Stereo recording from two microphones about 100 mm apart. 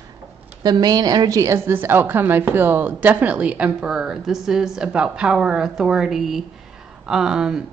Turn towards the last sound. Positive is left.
turn(degrees=-5)  # may be behind; listen again after turning